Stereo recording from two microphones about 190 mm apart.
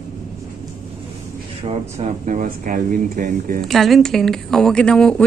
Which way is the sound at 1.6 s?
30° right (ahead or behind).